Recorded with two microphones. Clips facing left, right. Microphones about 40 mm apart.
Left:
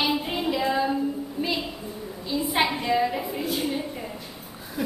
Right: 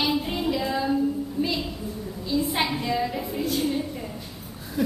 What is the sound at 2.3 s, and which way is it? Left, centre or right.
Speech, centre.